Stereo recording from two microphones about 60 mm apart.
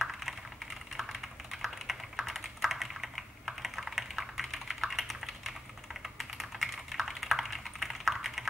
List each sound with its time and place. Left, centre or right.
0.0 s typing: centre
1.5 s typing: centre